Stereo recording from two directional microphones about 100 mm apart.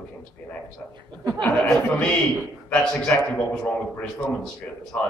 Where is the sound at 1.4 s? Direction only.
Centre (ahead or behind).